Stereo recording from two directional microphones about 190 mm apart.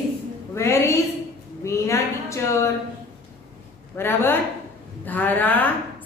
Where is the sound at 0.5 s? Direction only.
15° left (ahead or behind).